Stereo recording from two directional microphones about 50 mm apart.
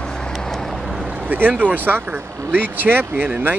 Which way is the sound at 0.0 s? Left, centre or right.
Centre.